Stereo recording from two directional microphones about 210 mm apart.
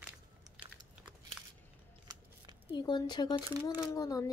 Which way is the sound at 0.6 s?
20° right (ahead or behind).